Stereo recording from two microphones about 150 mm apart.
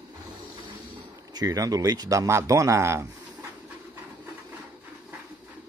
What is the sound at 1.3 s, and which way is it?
Speech, 25° right (ahead or behind).